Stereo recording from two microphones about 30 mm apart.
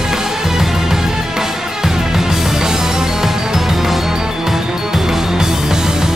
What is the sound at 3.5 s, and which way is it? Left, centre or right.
Music, centre.